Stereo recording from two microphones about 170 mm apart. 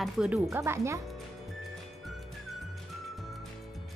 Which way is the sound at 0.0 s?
5° right (ahead or behind).